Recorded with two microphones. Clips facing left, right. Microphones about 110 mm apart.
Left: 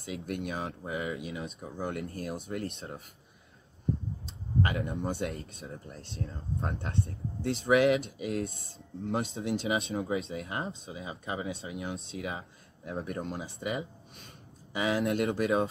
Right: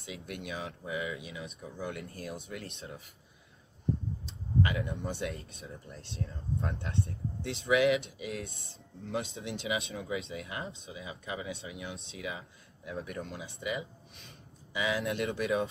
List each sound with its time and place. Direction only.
0.0 s speech: 45° left (ahead or behind)
4.6 s speech: 40° left (ahead or behind)